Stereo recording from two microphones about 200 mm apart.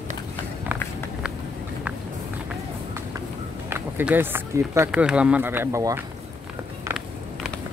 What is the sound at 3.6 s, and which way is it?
Speech, 10° right (ahead or behind).